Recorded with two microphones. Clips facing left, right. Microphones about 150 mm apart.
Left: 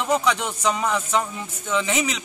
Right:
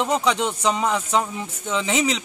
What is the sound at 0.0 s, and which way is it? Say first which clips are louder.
A man's voice: right 1 dB; 25° right (ahead or behind).